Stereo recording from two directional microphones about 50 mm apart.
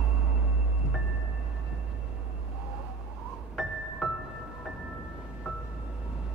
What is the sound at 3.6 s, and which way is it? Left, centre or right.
Music, centre.